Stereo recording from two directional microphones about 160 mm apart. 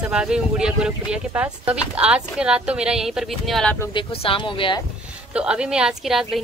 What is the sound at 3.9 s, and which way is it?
Speech, 35° left (ahead or behind).